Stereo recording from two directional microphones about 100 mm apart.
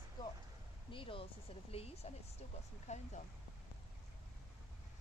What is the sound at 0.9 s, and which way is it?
Speech, 65° left (ahead or behind).